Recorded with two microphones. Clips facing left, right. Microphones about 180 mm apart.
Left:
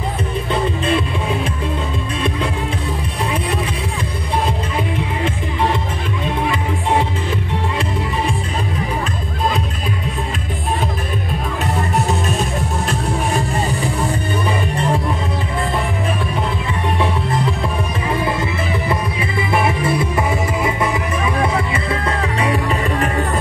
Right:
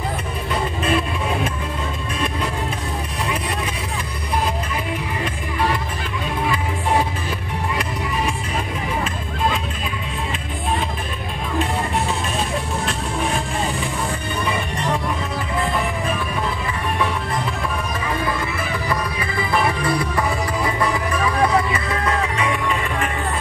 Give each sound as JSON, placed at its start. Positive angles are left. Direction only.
{"t": 18.9, "sound": "music", "side_deg": 25}